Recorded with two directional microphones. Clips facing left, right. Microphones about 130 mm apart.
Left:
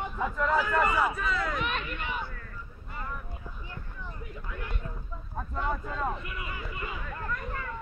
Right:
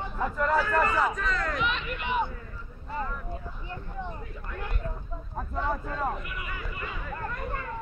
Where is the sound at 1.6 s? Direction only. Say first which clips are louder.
Right 2 dB; 50° left (ahead or behind).